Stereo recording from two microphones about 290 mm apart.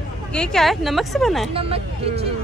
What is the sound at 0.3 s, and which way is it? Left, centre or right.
A woman's voice, centre.